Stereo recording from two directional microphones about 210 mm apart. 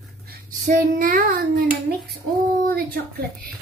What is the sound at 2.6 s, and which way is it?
Speech, 45° right (ahead or behind).